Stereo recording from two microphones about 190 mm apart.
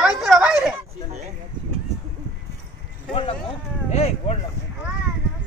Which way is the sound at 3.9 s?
35° left (ahead or behind).